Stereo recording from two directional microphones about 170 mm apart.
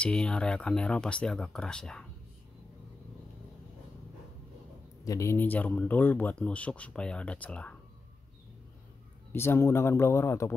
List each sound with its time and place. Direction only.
0.0 s speech: 5° left (ahead or behind)
5.0 s speech: 20° left (ahead or behind)
9.3 s speech: 15° left (ahead or behind)